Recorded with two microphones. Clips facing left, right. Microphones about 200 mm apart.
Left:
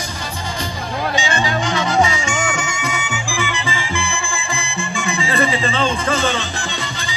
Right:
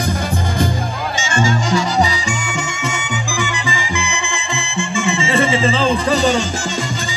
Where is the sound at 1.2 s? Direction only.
45° right (ahead or behind).